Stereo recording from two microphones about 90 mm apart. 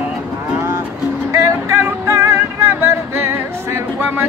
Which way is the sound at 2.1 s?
30° right (ahead or behind).